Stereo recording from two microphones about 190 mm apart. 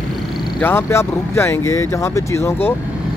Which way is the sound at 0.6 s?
15° left (ahead or behind).